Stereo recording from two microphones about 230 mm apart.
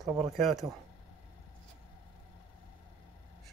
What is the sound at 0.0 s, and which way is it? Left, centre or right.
Speech, centre.